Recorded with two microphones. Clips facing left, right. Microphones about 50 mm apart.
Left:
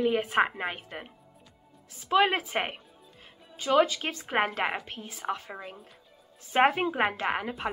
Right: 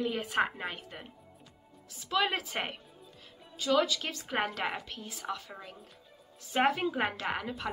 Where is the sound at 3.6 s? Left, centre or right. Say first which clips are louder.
Left 4 dB; left.